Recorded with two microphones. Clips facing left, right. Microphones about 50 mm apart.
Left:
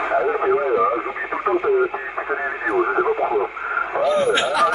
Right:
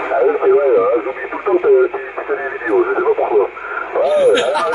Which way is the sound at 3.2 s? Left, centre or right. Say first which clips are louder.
Right 6 dB; centre.